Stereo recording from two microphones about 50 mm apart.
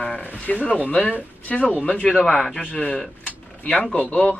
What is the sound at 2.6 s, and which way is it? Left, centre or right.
Speech, left.